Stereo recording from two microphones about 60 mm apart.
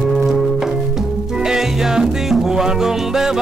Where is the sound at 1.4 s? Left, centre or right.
Centre.